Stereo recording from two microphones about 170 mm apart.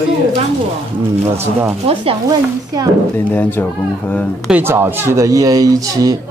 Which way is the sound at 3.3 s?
10° left (ahead or behind).